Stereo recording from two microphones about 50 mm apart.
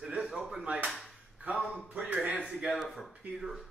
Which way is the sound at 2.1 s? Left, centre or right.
Right.